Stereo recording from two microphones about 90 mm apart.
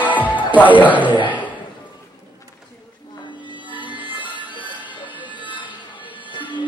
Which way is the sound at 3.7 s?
65° left (ahead or behind).